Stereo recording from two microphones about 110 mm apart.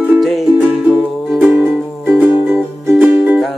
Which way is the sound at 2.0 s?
15° right (ahead or behind).